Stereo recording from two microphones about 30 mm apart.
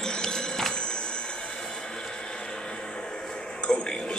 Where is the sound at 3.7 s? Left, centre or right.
Left.